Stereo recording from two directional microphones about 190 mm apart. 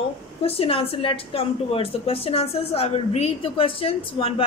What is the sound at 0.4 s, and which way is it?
A woman's voice, 30° left (ahead or behind).